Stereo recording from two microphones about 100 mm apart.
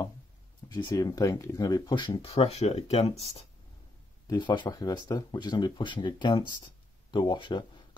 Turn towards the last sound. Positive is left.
turn(degrees=50)  # may be behind; listen again after turning